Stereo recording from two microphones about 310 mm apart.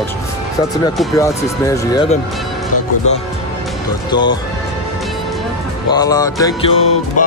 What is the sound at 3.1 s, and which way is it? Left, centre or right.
Speech, left.